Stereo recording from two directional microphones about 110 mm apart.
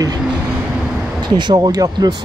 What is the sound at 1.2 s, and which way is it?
Speech, 40° right (ahead or behind).